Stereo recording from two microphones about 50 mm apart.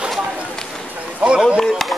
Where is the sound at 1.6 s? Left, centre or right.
Centre.